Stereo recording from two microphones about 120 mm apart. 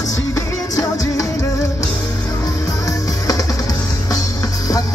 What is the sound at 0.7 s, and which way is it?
Music, 25° left (ahead or behind).